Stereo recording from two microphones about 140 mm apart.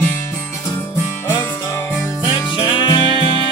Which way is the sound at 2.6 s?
30° left (ahead or behind).